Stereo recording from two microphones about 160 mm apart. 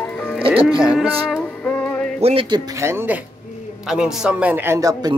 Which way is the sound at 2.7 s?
15° right (ahead or behind).